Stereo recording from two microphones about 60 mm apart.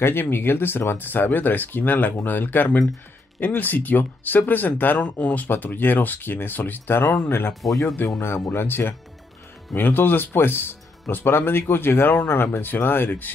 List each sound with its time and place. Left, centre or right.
0.0 s speech: left